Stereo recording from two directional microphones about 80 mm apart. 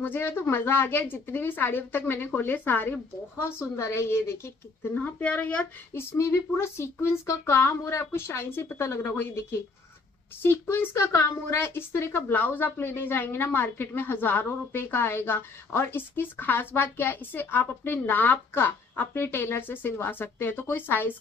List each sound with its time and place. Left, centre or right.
0.0 s speech: left
4.8 s speech: left
5.9 s speech: left